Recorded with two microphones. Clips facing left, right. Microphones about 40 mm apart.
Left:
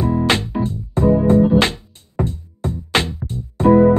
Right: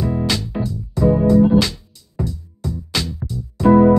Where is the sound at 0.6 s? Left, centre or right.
Left.